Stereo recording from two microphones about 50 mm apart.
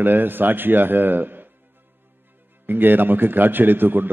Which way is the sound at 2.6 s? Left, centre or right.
Right.